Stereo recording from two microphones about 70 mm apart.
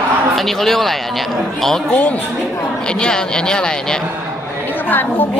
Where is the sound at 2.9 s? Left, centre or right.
Centre.